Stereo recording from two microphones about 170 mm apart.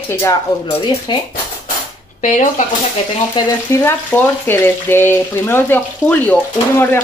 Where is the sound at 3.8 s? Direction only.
10° left (ahead or behind).